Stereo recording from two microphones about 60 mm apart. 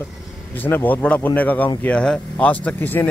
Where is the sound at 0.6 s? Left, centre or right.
Left.